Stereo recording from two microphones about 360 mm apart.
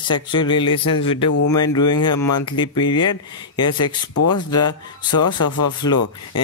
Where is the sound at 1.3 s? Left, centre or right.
Left.